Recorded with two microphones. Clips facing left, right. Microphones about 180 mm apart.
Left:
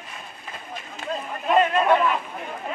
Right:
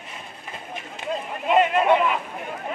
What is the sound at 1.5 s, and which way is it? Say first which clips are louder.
Speech: right 1 dB; 15° right (ahead or behind).